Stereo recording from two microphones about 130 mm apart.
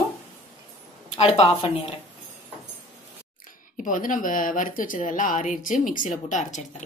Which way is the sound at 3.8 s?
90° left.